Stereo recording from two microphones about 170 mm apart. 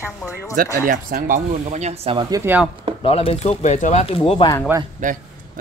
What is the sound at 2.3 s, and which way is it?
Speech, 20° right (ahead or behind).